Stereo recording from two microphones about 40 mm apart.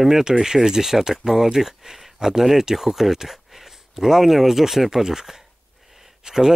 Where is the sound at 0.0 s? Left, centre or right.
Centre.